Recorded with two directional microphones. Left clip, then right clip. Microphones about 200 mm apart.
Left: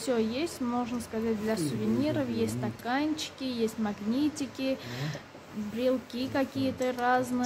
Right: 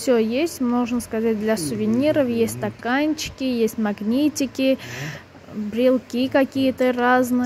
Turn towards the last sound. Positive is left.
turn(degrees=-30)  # may be behind; listen again after turning